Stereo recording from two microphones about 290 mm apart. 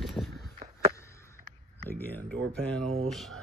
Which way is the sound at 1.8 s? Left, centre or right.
Centre.